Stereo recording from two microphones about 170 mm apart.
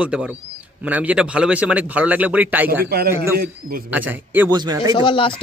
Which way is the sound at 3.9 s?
10° right (ahead or behind).